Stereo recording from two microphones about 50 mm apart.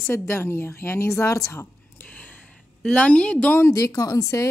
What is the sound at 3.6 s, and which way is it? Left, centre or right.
Speech, left.